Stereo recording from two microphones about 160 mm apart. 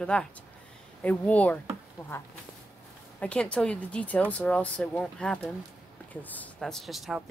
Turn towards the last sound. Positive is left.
turn(degrees=0)  # may be behind; listen again after turning